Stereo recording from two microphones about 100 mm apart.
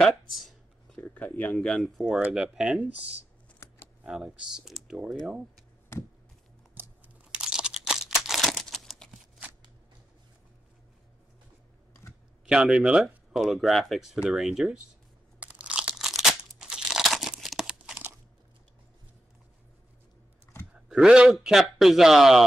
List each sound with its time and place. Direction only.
0.3 s a sound: centre (ahead or behind)
0.9 s a sound: 15° left (ahead or behind)
1.6 s speech: 5° left (ahead or behind)
3.5 s shuffling cards: 25° left (ahead or behind)
4.0 s speech: 10° right (ahead or behind)
6.8 s typing: 20° right (ahead or behind)
7.2 s crumpling: 10° right (ahead or behind)
12.4 s speech: 10° right (ahead or behind)
15.4 s crunch: 15° right (ahead or behind)
16.0 s crumpling: 5° right (ahead or behind)
20.9 s speech: 5° right (ahead or behind)